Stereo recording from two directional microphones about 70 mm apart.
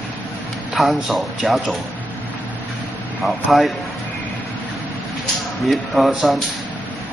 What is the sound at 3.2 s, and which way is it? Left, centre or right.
Speech, centre.